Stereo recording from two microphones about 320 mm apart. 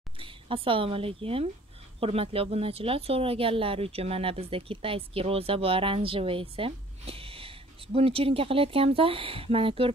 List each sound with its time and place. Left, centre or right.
0.2 s speech: centre